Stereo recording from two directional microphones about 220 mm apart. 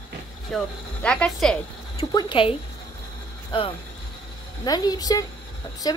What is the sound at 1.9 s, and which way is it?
Speech, 20° left (ahead or behind).